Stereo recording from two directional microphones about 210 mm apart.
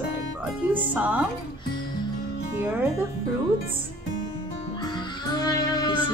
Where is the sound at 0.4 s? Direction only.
5° right (ahead or behind).